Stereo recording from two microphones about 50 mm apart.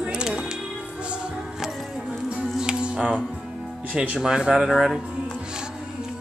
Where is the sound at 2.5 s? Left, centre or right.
Centre.